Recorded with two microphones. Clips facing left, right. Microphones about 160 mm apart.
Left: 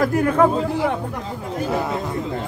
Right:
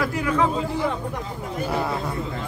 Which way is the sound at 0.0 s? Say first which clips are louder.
Left 6 dB; 50° left (ahead or behind).